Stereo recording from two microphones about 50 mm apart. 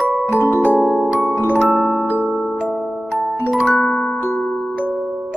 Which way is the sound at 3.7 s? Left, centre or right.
Centre.